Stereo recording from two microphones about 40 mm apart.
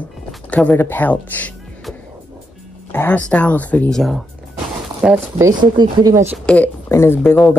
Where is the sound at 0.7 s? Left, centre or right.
Left.